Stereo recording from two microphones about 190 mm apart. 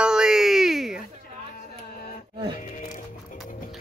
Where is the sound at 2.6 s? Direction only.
45° left (ahead or behind).